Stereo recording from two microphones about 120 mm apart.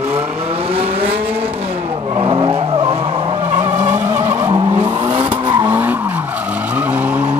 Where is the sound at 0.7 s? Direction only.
55° right (ahead or behind).